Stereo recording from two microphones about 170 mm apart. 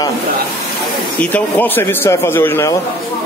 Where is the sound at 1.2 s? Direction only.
10° left (ahead or behind).